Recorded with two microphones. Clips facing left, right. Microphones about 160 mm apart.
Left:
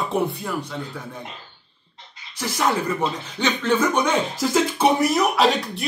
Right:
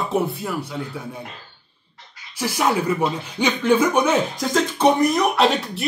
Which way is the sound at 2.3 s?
10° right (ahead or behind).